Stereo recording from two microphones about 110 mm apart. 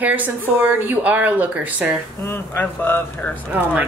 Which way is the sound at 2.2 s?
20° left (ahead or behind).